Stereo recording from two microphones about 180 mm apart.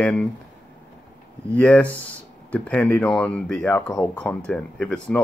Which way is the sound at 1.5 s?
10° left (ahead or behind).